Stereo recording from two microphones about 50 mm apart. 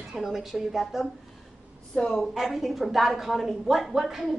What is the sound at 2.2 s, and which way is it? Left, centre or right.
A woman's voice, centre.